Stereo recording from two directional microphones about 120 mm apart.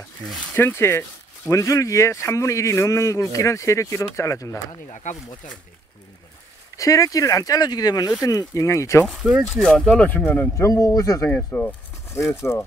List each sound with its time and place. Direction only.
0.6 s speech: 20° left (ahead or behind)
6.8 s speech: 30° left (ahead or behind)
9.0 s speech: 5° right (ahead or behind); by 10.7 s 15° left (ahead or behind)
10.7 s speech: 25° left (ahead or behind)
11.2 s speech: 10° left (ahead or behind)